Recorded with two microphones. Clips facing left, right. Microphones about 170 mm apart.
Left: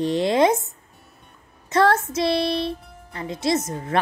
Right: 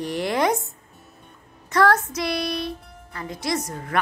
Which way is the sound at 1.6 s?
25° left (ahead or behind).